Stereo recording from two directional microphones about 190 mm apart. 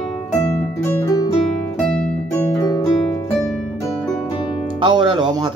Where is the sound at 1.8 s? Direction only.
5° left (ahead or behind).